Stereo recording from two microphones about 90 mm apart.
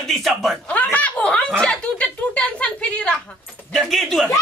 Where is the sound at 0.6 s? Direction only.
15° left (ahead or behind).